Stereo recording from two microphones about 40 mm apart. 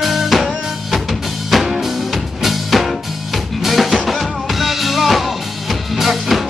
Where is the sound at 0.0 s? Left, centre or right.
Centre.